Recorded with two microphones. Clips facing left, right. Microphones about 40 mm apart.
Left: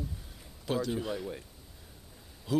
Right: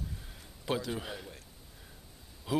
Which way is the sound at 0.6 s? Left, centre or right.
Centre.